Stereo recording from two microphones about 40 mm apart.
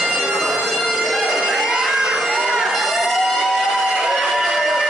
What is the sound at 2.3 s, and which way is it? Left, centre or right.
Crowd, centre.